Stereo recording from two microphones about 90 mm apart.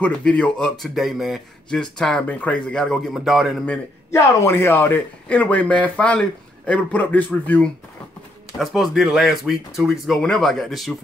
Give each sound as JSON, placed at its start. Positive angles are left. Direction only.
{"t": 0.0, "sound": "speech", "side_deg": 15}
{"t": 3.1, "sound": "speech", "side_deg": -5}
{"t": 4.1, "sound": "speech", "side_deg": 25}
{"t": 8.5, "sound": "speech", "side_deg": 0}